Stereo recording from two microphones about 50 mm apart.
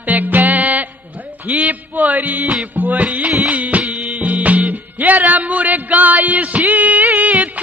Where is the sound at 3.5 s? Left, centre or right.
Right.